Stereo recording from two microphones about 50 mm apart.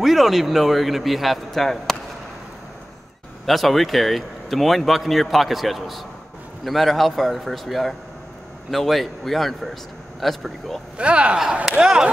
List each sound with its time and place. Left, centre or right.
0.0 s speech: centre
3.4 s speech: centre
11.0 s speech: right